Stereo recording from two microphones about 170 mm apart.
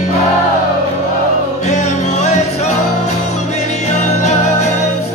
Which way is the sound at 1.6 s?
45° left (ahead or behind).